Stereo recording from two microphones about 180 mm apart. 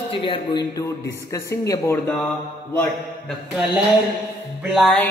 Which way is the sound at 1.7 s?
15° left (ahead or behind).